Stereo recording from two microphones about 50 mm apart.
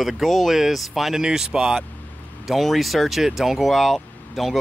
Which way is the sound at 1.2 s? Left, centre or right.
Centre.